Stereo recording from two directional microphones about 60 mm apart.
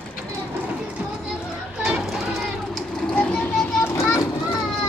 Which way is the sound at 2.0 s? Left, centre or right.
Centre.